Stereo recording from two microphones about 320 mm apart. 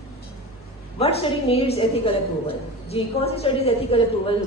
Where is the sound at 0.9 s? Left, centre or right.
Centre.